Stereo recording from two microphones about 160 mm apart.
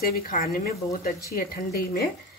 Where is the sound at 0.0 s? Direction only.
65° left (ahead or behind).